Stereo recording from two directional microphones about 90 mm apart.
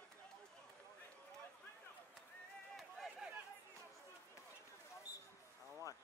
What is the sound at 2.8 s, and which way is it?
Run, centre (ahead or behind).